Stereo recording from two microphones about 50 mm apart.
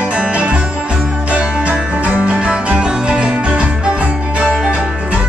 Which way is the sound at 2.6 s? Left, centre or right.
Centre.